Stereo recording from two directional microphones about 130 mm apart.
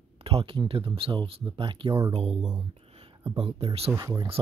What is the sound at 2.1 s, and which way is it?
Speech, 50° right (ahead or behind).